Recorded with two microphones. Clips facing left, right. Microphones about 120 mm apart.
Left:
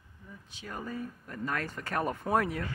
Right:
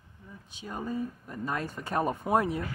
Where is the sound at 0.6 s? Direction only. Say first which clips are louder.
Right 4 dB; 20° right (ahead or behind).